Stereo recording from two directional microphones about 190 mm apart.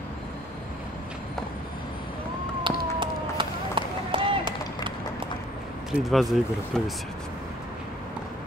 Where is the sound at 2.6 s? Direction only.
25° right (ahead or behind).